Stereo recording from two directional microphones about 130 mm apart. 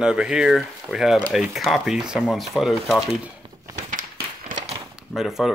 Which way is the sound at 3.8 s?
90° right.